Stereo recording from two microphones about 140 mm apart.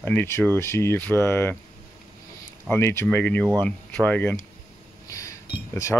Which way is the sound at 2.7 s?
15° left (ahead or behind).